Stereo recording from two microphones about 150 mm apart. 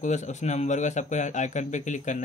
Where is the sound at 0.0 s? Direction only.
50° left (ahead or behind).